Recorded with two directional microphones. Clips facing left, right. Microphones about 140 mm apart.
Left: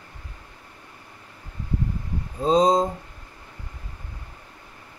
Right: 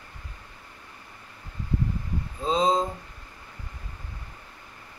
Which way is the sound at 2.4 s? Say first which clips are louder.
Left 5 dB; 40° left (ahead or behind).